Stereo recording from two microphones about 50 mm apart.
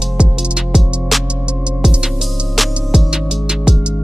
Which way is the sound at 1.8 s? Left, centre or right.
Centre.